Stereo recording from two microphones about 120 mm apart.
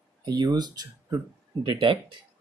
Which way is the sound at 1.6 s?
45° right (ahead or behind).